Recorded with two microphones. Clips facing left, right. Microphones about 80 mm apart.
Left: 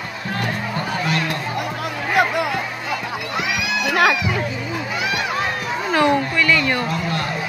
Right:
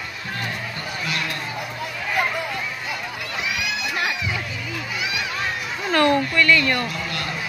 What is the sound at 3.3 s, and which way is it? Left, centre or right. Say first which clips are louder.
Crowd: left 4 dB; left.